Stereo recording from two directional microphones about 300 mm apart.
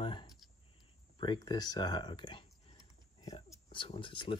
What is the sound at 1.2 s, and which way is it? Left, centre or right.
Speech, centre.